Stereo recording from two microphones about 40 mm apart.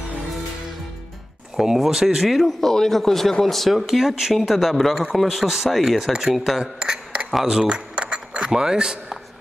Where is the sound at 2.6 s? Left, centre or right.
Centre.